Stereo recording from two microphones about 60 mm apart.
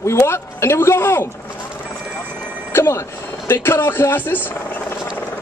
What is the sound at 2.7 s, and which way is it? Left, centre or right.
Reversing beeps, left.